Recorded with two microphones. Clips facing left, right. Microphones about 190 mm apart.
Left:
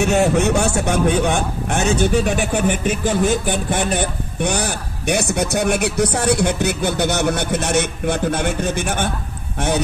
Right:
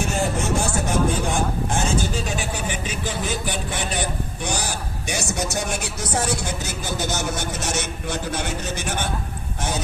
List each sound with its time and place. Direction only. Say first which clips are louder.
0.0 s a man's voice: left 8 dB; 70° left (ahead or behind); by 9.1 s 55° left (ahead or behind)